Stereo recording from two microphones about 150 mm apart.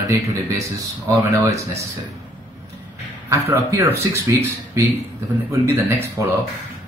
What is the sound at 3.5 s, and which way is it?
Speech, 20° right (ahead or behind).